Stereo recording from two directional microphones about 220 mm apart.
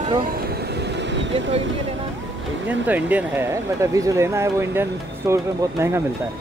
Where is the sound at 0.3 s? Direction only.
45° right (ahead or behind).